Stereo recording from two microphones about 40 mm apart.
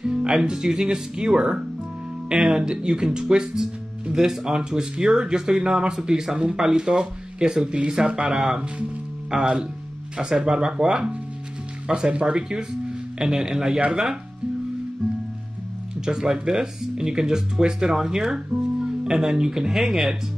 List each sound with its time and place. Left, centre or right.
0.0 s speech: right
16.1 s speech: centre